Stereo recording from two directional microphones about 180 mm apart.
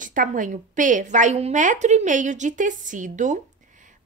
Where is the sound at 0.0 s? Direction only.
45° right (ahead or behind).